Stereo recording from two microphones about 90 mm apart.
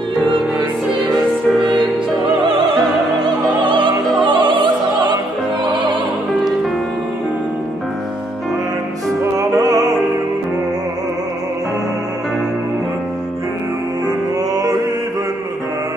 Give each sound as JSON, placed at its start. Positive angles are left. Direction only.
{"t": 3.6, "sound": "music", "side_deg": -65}
{"t": 5.7, "sound": "opera", "side_deg": -60}
{"t": 9.4, "sound": "music", "side_deg": -40}
{"t": 14.0, "sound": "music", "side_deg": -40}